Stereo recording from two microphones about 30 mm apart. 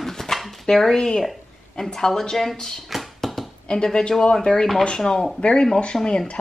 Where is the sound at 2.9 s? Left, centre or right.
Centre.